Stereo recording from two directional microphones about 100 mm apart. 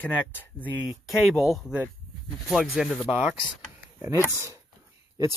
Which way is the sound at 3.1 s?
15° right (ahead or behind).